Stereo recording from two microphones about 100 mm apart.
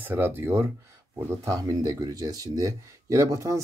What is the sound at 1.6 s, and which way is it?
Speech, 35° right (ahead or behind).